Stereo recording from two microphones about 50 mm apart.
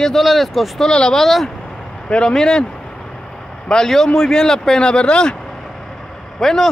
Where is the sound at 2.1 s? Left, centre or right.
Centre.